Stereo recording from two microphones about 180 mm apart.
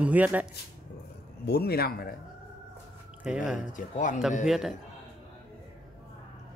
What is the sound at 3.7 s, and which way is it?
Speech, 45° left (ahead or behind).